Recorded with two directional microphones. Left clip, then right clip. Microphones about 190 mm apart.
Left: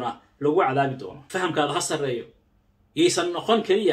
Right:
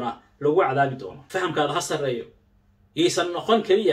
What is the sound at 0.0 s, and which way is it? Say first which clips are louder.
Speech: right 1 dB; 15° left (ahead or behind).